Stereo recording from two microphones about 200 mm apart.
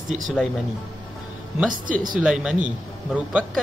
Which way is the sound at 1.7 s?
40° right (ahead or behind).